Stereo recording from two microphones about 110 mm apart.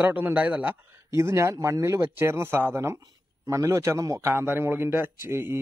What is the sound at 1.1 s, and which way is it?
A man's voice, 25° right (ahead or behind).